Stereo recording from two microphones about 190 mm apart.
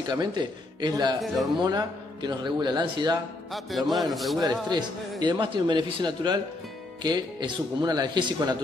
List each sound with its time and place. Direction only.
0.1 s a man's voice: 25° right (ahead or behind)
1.2 s a man's voice: centre (ahead or behind)
1.6 s a man's voice: 20° right (ahead or behind)
3.5 s a man's voice: centre (ahead or behind)
4.4 s a man's voice: 20° right (ahead or behind)